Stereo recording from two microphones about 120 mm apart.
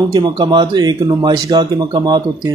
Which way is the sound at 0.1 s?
35° right (ahead or behind).